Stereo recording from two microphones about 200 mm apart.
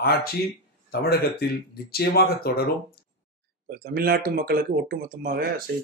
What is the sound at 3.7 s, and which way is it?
Speech, 50° right (ahead or behind).